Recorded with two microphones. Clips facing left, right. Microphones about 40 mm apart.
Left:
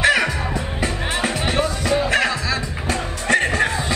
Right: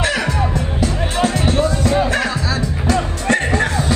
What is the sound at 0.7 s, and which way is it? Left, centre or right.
Music, left.